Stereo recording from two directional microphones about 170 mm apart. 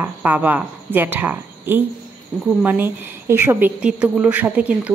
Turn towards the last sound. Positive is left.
turn(degrees=-10)  # may be behind; listen again after turning